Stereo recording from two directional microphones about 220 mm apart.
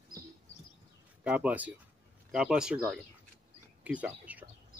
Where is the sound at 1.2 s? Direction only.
5° right (ahead or behind).